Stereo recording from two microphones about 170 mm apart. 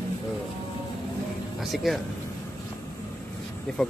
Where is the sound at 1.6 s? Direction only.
Centre (ahead or behind).